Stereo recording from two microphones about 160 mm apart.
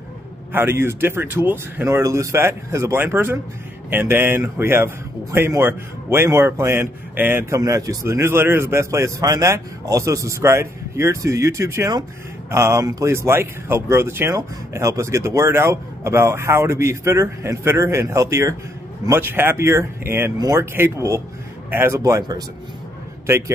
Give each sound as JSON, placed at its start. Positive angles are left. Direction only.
{"t": 0.5, "sound": "a man's voice", "side_deg": -15}